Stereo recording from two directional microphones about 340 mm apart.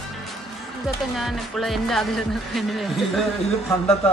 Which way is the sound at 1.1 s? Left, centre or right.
Centre.